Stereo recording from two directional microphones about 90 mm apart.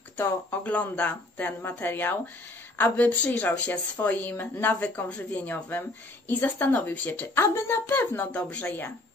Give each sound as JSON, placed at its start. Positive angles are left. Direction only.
{"t": 0.2, "sound": "a woman's voice", "side_deg": 20}
{"t": 8.3, "sound": "speech", "side_deg": 15}